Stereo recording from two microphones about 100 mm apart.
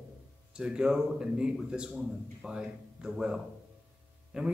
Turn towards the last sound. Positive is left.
turn(degrees=-10)  # may be behind; listen again after turning